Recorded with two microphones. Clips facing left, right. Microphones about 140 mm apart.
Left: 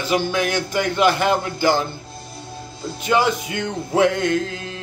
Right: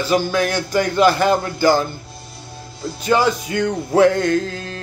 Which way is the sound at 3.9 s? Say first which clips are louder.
Right 3 dB; 40° right (ahead or behind).